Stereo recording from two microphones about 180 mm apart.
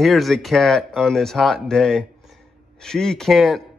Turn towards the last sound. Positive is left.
turn(degrees=0)  # may be behind; listen again after turning